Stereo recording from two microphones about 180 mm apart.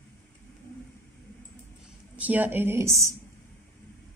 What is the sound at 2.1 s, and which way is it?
A woman's voice, 10° right (ahead or behind).